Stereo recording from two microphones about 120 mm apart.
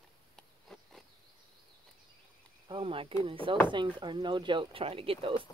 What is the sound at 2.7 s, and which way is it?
Speech, 50° right (ahead or behind).